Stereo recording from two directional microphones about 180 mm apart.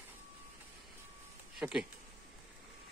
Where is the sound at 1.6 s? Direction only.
5° right (ahead or behind).